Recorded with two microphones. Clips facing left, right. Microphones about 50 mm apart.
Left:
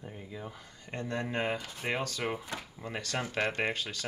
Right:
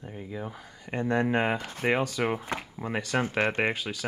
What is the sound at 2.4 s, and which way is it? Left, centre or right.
Speech, right.